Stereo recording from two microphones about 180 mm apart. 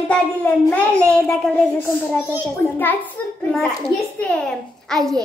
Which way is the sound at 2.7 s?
10° left (ahead or behind).